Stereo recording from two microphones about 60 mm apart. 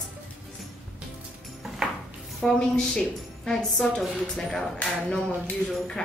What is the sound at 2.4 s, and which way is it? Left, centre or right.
A woman's voice, centre.